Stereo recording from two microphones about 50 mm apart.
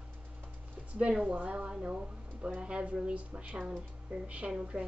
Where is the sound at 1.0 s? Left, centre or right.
Right.